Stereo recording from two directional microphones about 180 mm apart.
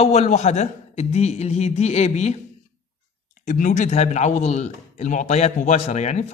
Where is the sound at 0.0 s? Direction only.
35° left (ahead or behind).